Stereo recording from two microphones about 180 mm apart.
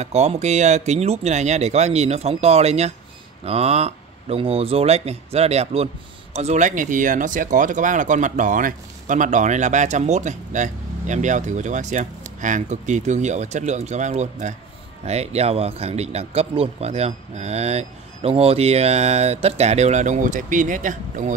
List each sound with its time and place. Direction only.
0.0 s speech: 35° right (ahead or behind)